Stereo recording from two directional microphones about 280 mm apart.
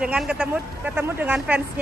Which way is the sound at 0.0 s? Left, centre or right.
Centre.